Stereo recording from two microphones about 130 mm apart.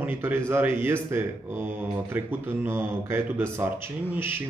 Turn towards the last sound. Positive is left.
turn(degrees=-15)  # may be behind; listen again after turning